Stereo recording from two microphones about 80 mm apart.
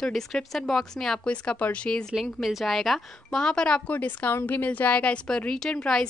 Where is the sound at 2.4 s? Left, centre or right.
Centre.